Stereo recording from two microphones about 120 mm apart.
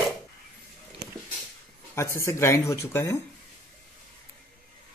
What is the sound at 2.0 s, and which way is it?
Speech, 25° left (ahead or behind).